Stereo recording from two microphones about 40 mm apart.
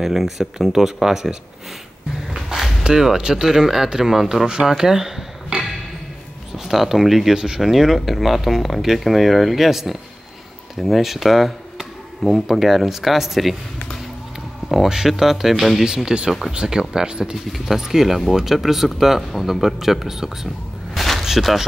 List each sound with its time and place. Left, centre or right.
0.0 s speech: centre
2.2 s a sound: centre
2.8 s speech: centre
5.5 s a sound: right
6.5 s speech: centre
7.3 s speech: centre
7.6 s speech: centre
12.2 s speech: centre
12.4 s speech: centre
14.9 s speech: centre
17.5 s speech: centre
20.9 s a sound: centre
21.2 s a sound: centre